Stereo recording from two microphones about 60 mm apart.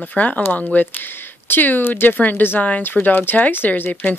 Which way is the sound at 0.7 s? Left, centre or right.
Left.